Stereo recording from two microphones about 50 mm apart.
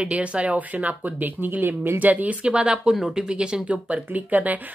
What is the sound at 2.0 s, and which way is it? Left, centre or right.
Speech, right.